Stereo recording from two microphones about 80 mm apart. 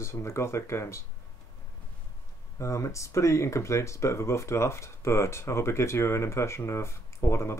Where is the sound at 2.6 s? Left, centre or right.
Left.